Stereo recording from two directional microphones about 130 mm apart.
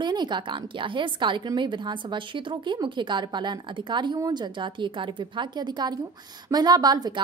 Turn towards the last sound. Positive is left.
turn(degrees=-30)  # may be behind; listen again after turning